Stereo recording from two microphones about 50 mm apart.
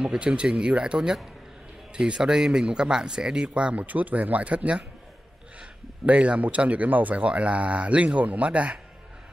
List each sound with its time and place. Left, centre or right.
0.0 s speech: centre
3.8 s speech: right
6.0 s speech: right